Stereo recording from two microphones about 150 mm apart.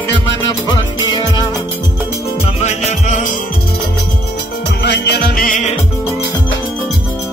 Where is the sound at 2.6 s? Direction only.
50° left (ahead or behind).